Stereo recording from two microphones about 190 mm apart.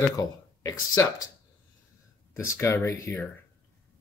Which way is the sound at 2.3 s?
15° left (ahead or behind).